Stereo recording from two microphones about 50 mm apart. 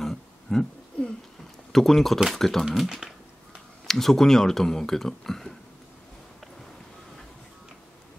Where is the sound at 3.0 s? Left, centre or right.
Centre.